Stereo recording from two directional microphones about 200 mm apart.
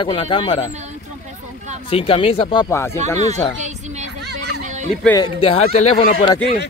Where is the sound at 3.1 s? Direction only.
35° right (ahead or behind).